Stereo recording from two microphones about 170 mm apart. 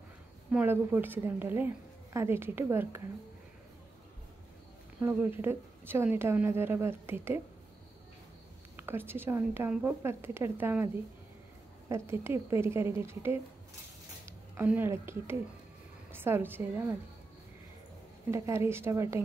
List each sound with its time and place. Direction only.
0.5 s a woman's voice: 10° right (ahead or behind)
5.0 s a woman's voice: 15° right (ahead or behind)
8.7 s a woman's voice: 15° right (ahead or behind)
11.9 s a woman's voice: 15° right (ahead or behind)
18.3 s a woman's voice: 15° right (ahead or behind)